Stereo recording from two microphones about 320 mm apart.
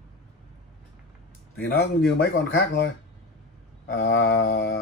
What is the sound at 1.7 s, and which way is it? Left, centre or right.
Speech, left.